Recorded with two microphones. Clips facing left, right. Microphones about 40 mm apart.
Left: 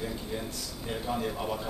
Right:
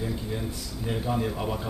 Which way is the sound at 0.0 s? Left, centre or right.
Centre.